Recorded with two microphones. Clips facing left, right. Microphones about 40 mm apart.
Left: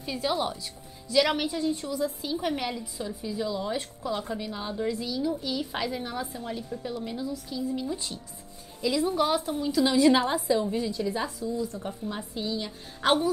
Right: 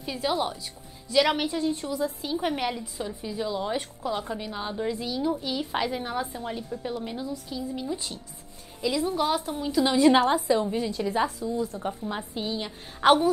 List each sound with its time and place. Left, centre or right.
0.0 s a woman's voice: centre
9.6 s a woman's voice: centre; by 13.3 s right